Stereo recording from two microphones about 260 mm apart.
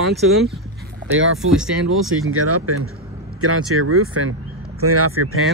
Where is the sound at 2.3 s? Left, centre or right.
Right.